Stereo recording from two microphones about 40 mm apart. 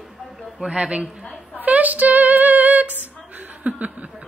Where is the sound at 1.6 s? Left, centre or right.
Right.